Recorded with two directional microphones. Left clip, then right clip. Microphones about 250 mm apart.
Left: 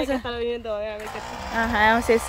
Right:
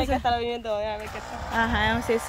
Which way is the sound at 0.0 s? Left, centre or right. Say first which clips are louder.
Right 1 dB; right.